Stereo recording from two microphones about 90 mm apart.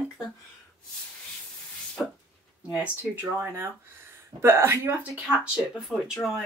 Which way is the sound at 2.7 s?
20° right (ahead or behind).